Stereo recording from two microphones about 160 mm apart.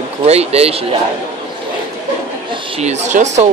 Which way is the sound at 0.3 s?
40° right (ahead or behind).